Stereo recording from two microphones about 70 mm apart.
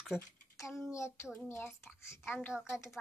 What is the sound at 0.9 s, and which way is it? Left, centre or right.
Child singing, left.